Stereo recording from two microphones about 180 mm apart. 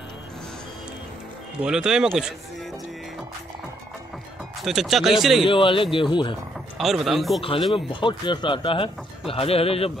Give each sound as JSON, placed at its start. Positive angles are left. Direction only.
{"t": 1.6, "sound": "speech", "side_deg": -5}
{"t": 4.6, "sound": "speech", "side_deg": 0}
{"t": 5.4, "sound": "speech", "side_deg": 30}
{"t": 6.8, "sound": "speech", "side_deg": 0}
{"t": 7.7, "sound": "a man's voice", "side_deg": 25}